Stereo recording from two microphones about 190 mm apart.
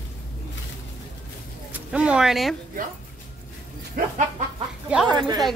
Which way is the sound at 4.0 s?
50° right (ahead or behind).